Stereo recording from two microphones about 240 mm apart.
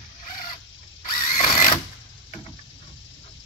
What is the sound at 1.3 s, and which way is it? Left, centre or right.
Sewing machine, left.